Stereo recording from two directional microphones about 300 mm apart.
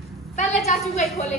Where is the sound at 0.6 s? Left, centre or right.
Left.